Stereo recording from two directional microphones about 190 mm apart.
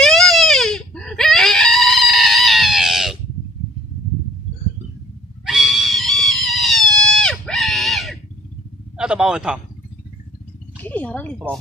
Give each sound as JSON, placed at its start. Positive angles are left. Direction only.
{"t": 0.0, "sound": "baby cry", "side_deg": 0}
{"t": 5.4, "sound": "screaming", "side_deg": 0}
{"t": 8.9, "sound": "a man's voice", "side_deg": -5}
{"t": 10.8, "sound": "speech", "side_deg": 10}